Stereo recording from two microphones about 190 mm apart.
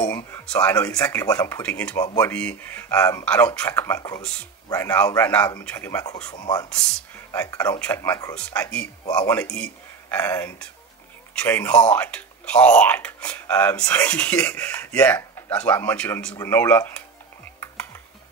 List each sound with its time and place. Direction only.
0.0 s a sound: 15° left (ahead or behind)
0.7 s speech: 15° left (ahead or behind)
2.0 s speech: 15° left (ahead or behind)
2.3 s speech: 5° left (ahead or behind)
9.0 s speech: 20° left (ahead or behind)